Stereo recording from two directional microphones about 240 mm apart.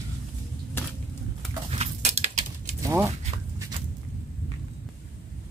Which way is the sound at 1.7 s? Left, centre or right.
Right.